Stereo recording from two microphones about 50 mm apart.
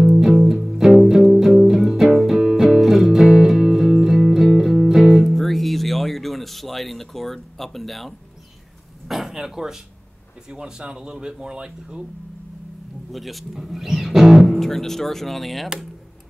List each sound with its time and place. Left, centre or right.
0.0 s music: centre
9.0 s speech: centre
13.1 s speech: centre